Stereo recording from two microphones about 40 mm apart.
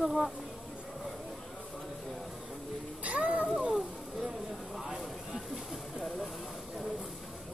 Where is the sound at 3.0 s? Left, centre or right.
Right.